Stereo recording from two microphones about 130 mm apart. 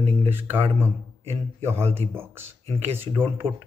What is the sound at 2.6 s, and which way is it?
Speech, 50° right (ahead or behind).